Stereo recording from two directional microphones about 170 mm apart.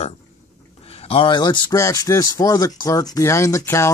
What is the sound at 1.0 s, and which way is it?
Speech, 30° left (ahead or behind).